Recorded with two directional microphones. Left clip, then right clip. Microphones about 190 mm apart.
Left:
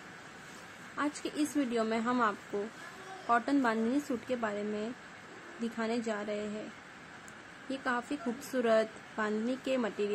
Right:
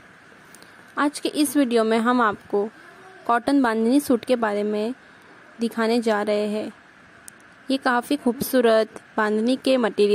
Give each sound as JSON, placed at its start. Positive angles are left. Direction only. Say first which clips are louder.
{"t": 0.9, "sound": "a woman's voice", "louder": "right 12 dB", "side_deg": -50}
{"t": 7.7, "sound": "a woman's voice", "louder": "right 13 dB", "side_deg": -50}